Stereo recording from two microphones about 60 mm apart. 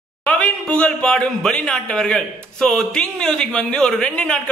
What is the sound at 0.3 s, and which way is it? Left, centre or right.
A man's voice, left.